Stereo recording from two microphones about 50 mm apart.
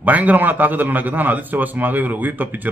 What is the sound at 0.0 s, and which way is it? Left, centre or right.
A man's voice, right.